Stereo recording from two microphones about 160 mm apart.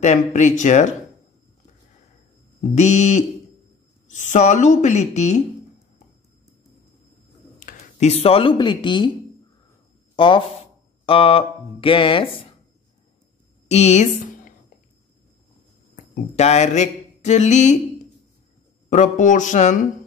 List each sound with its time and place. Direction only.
0.0 s speech: 50° left (ahead or behind)
2.7 s speech: 45° left (ahead or behind)
7.6 s speech: 45° left (ahead or behind)
10.1 s speech: 30° left (ahead or behind)
13.7 s a sound: 45° left (ahead or behind)
16.3 s speech: 45° left (ahead or behind)
18.9 s speech: 50° left (ahead or behind)